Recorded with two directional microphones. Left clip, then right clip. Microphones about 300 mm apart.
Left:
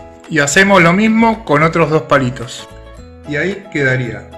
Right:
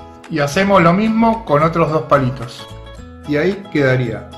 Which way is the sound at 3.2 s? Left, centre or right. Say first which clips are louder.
Right 1 dB; centre.